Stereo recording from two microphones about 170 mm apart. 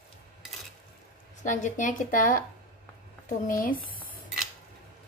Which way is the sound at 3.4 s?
55° left (ahead or behind).